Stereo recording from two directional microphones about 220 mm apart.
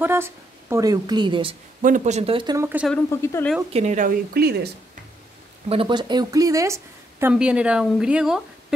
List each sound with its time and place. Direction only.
0.0 s speech: 10° right (ahead or behind)
1.8 s speech: 35° right (ahead or behind); by 2.9 s 10° right (ahead or behind)
2.9 s speech: 10° left (ahead or behind)
3.7 s speech: 35° right (ahead or behind)
5.7 s speech: 25° right (ahead or behind); by 8.7 s 5° right (ahead or behind)